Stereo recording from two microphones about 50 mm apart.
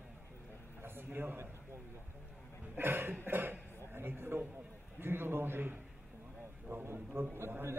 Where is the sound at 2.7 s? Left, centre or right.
Right.